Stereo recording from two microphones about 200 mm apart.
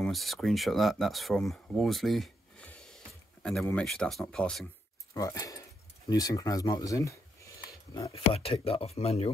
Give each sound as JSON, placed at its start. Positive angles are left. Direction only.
{"t": 0.0, "sound": "speech", "side_deg": 0}
{"t": 5.1, "sound": "keys jangling", "side_deg": 15}
{"t": 8.1, "sound": "speech", "side_deg": 30}